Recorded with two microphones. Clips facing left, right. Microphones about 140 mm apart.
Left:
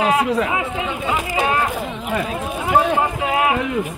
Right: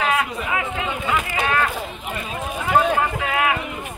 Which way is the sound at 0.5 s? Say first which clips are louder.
Left 2 dB; 25° left (ahead or behind).